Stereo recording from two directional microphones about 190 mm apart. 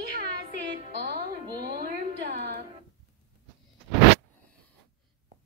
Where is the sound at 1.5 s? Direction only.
55° right (ahead or behind).